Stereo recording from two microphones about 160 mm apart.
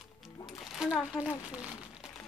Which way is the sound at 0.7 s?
5° right (ahead or behind).